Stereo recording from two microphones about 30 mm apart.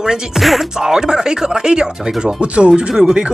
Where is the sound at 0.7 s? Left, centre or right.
Centre.